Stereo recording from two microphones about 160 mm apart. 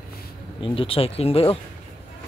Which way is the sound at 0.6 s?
35° left (ahead or behind).